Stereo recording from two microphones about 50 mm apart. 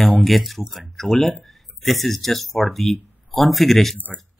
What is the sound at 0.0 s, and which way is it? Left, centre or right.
Speech, centre.